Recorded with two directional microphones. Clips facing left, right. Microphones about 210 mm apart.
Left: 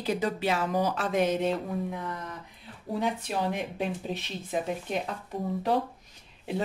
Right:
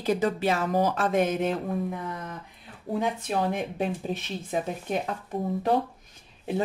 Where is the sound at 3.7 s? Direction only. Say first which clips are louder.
Right 3 dB; 50° right (ahead or behind).